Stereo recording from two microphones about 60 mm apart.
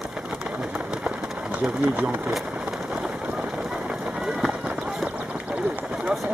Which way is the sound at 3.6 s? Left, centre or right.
Centre.